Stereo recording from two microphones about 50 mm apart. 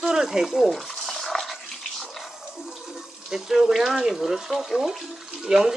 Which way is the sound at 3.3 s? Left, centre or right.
Centre.